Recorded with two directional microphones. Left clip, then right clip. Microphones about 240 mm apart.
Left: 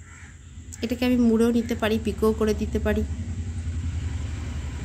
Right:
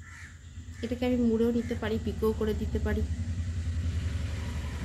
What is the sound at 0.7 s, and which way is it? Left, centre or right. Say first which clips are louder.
Speech: left 5 dB; left.